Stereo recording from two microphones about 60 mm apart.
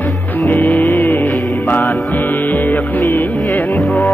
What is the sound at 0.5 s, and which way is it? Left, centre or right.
Music, left.